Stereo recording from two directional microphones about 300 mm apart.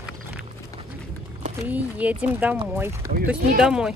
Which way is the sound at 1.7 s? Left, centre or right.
Centre.